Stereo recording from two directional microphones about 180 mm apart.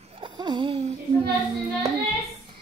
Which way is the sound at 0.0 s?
30° right (ahead or behind).